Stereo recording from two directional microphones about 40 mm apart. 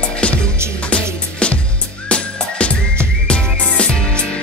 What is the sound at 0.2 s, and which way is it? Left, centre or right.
Music, left.